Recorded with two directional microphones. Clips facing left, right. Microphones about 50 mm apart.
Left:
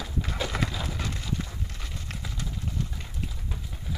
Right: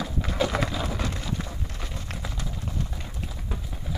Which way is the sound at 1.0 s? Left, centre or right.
Centre.